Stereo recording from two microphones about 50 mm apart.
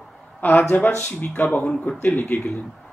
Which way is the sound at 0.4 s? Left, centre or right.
Left.